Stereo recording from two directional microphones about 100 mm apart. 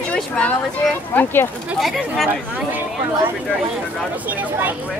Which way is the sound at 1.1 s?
20° left (ahead or behind).